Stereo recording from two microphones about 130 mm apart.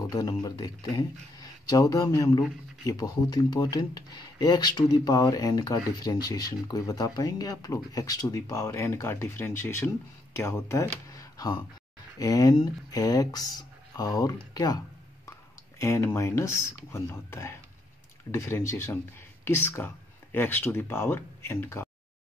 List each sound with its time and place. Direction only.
0.1 s speech: 30° left (ahead or behind)
15.8 s speech: 20° left (ahead or behind)